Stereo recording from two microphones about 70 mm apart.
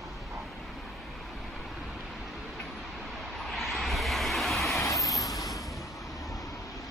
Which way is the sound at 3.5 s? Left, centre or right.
Centre.